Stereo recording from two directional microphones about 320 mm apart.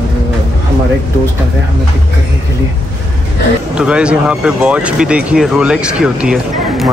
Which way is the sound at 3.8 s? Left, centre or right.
Centre.